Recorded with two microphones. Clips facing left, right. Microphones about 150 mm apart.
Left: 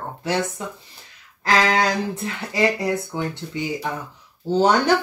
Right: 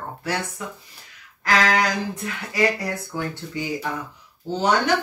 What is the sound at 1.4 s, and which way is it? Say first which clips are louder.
Speech: left 1 dB; 30° left (ahead or behind).